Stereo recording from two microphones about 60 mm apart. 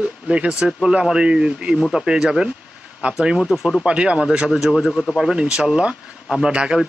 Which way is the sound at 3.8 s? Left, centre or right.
Centre.